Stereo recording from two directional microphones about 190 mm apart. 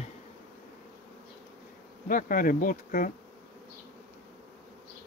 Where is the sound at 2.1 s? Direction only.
45° left (ahead or behind).